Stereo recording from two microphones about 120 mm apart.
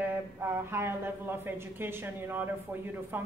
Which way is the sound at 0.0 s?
15° right (ahead or behind).